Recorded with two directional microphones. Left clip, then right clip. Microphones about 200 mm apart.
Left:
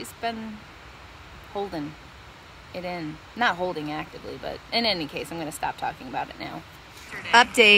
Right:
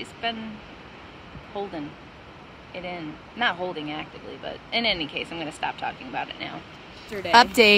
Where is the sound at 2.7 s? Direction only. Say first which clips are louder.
Left 1 dB; 15° left (ahead or behind).